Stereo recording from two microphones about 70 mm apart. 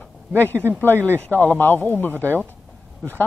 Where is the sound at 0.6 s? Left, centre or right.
Right.